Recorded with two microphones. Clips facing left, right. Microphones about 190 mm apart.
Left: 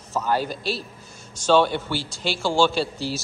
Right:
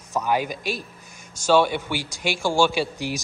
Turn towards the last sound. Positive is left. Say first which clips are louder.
# even
turn(degrees=-15)  # may be behind; listen again after turning